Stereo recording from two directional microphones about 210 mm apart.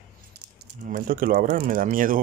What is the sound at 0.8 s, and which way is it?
Speech, 40° right (ahead or behind).